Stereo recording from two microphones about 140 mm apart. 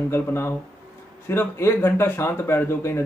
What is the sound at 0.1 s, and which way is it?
A man's voice, 20° left (ahead or behind).